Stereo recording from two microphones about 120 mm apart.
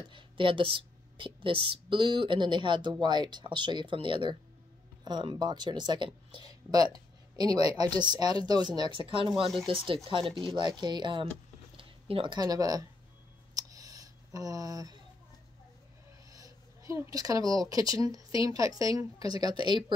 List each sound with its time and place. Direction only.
0.1 s a woman's voice: 45° right (ahead or behind); by 12.8 s 30° right (ahead or behind)
13.6 s a sound: 30° right (ahead or behind)
16.3 s speech: 30° right (ahead or behind)